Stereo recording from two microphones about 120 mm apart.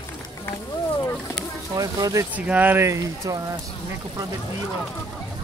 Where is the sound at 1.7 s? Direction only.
30° right (ahead or behind).